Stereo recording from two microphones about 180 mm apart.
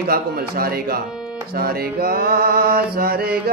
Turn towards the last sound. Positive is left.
turn(degrees=-60)  # may be behind; listen again after turning